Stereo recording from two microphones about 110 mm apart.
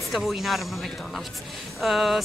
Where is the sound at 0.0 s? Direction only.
Centre (ahead or behind).